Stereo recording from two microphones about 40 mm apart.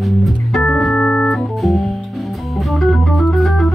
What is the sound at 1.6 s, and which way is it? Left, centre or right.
Organ, centre.